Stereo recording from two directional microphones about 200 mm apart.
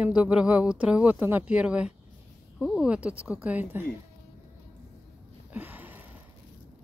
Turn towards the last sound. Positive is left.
turn(degrees=-10)  # may be behind; listen again after turning